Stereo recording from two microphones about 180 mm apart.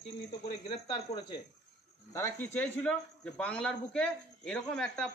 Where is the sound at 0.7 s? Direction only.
30° left (ahead or behind).